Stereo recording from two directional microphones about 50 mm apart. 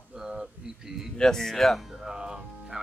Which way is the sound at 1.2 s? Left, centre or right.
Centre.